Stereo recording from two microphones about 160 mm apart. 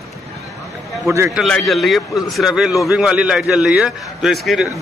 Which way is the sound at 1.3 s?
Centre (ahead or behind).